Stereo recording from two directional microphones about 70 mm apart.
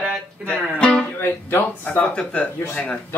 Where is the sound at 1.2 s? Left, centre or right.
Left.